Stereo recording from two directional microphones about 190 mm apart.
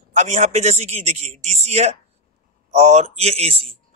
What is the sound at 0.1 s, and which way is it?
Speech, 40° right (ahead or behind).